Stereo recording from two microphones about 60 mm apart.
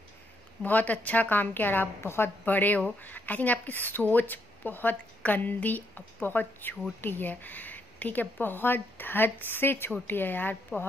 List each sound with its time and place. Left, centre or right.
0.7 s a woman's voice: left
2.4 s a woman's voice: left